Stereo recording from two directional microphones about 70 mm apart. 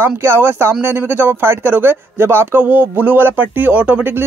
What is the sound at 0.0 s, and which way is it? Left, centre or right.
Speech, right.